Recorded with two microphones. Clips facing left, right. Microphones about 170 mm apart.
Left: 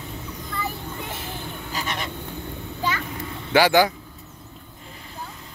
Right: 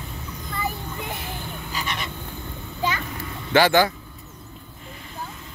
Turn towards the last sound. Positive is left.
turn(degrees=10)  # may be behind; listen again after turning